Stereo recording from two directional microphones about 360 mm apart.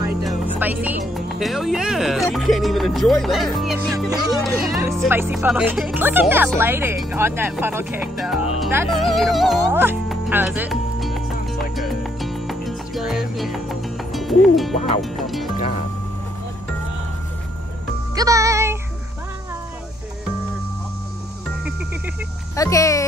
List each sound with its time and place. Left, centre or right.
0.0 s music: centre
1.1 s speech: centre
8.9 s music: centre
18.1 s music: centre
22.6 s speech: centre